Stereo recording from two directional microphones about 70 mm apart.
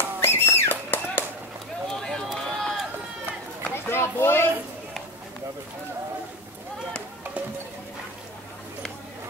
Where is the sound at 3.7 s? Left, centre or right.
Left.